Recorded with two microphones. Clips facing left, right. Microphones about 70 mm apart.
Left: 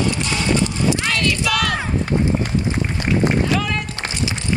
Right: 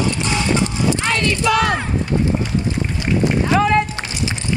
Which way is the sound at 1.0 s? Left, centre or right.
Right.